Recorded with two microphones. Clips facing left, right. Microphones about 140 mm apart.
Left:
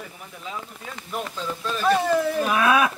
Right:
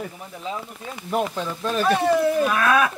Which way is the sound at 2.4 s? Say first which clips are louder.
Even; 10° left (ahead or behind).